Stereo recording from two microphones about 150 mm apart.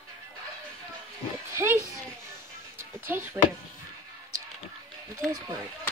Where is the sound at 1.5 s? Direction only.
20° right (ahead or behind).